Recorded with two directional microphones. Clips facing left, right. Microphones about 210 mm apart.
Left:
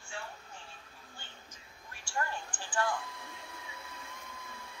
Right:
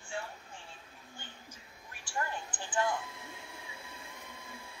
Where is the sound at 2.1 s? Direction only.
20° right (ahead or behind).